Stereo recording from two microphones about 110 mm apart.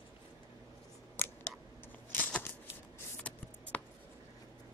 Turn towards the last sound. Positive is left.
turn(degrees=15)  # may be behind; listen again after turning